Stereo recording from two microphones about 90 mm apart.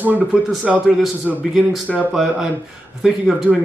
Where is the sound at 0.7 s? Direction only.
5° right (ahead or behind).